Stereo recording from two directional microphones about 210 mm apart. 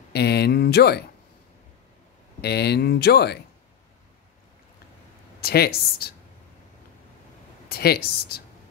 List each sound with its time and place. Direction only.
0.1 s a sound: 50° left (ahead or behind)
2.4 s speech: 50° left (ahead or behind)
5.4 s speech: 45° left (ahead or behind)
7.7 s speech: 45° left (ahead or behind)